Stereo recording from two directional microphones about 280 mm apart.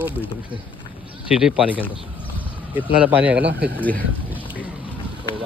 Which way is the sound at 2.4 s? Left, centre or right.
Centre.